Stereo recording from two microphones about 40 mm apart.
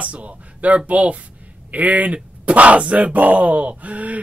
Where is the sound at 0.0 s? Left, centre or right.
Right.